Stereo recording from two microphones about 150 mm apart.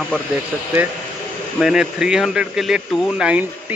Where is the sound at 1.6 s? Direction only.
5° right (ahead or behind).